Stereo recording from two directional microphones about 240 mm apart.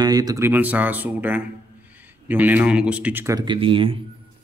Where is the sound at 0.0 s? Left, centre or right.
Centre.